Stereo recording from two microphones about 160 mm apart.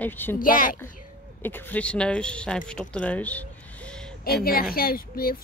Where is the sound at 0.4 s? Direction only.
60° left (ahead or behind).